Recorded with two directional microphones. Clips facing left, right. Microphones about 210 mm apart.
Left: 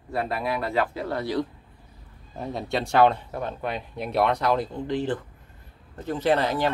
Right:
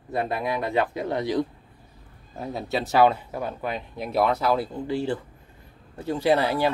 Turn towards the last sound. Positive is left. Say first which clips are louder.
# right 1 dB
turn(degrees=-10)  # may be behind; listen again after turning